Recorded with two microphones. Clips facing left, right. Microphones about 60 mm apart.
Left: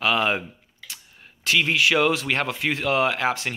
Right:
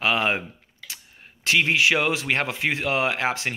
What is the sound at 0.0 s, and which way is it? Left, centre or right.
Speech, right.